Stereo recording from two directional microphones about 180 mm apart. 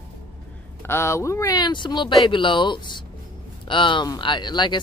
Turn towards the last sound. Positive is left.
turn(degrees=25)  # may be behind; listen again after turning